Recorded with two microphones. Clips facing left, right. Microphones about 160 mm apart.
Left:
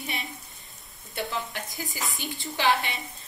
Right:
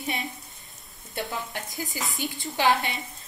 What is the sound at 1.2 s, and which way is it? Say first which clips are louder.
Speech: left 1 dB; centre (ahead or behind).